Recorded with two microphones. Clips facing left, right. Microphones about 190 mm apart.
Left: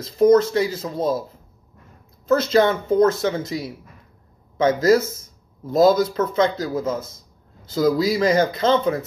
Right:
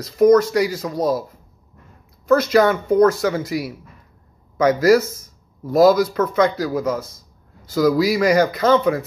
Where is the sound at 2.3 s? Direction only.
25° left (ahead or behind).